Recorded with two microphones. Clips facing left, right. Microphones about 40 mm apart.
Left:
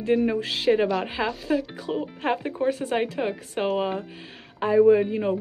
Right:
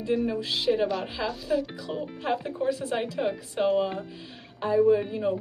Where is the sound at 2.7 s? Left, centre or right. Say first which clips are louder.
Left 3 dB; left.